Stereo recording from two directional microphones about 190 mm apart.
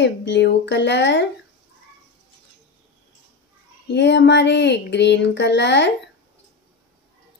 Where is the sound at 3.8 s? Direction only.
65° left (ahead or behind).